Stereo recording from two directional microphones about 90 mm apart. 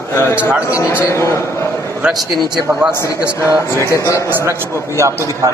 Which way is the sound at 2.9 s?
35° left (ahead or behind).